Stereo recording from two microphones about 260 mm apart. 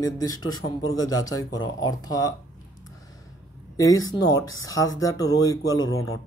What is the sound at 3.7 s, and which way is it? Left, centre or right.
Speech, centre.